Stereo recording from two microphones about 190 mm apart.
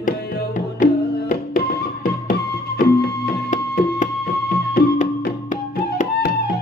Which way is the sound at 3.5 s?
40° left (ahead or behind).